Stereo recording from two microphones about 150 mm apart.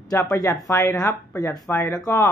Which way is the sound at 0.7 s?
20° left (ahead or behind).